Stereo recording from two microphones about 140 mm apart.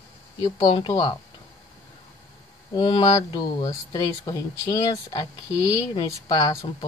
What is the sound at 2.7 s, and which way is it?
Speech, 35° left (ahead or behind).